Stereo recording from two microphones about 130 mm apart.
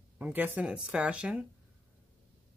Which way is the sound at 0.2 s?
10° right (ahead or behind).